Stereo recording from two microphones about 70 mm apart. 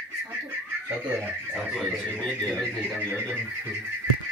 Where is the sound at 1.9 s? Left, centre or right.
Centre.